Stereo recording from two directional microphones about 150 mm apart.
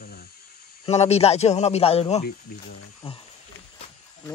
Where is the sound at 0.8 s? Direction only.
45° left (ahead or behind).